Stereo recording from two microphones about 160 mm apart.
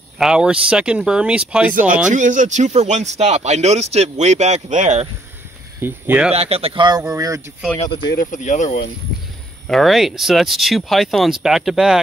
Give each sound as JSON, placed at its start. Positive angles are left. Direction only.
{"t": 0.2, "sound": "speech", "side_deg": -5}
{"t": 2.0, "sound": "speech", "side_deg": -50}
{"t": 5.8, "sound": "speech", "side_deg": -15}
{"t": 6.3, "sound": "speech", "side_deg": -40}
{"t": 7.1, "sound": "speech", "side_deg": -20}
{"t": 8.0, "sound": "speech", "side_deg": 90}
{"t": 8.3, "sound": "speech", "side_deg": 50}
{"t": 9.7, "sound": "speech", "side_deg": 0}